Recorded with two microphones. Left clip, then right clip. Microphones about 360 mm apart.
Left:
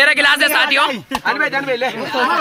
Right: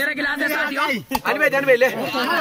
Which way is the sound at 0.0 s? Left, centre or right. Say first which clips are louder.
Left 10 dB; centre.